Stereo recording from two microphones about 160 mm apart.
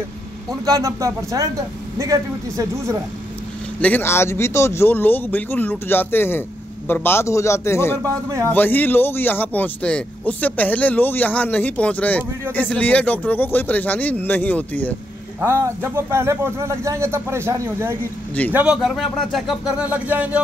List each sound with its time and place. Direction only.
0.7 s speech: 20° right (ahead or behind)
3.8 s speech: 15° left (ahead or behind)
8.0 s speech: 20° right (ahead or behind)
8.5 s speech: 10° left (ahead or behind)
15.4 s speech: 15° right (ahead or behind)